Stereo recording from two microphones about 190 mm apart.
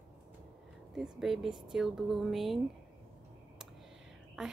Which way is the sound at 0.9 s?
Centre (ahead or behind).